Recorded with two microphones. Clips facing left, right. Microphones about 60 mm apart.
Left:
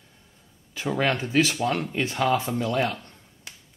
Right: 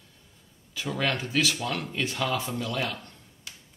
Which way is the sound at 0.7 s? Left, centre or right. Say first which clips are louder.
Left 4 dB; left.